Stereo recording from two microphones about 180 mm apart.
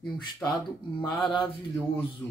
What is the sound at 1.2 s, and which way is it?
Speech, 25° left (ahead or behind).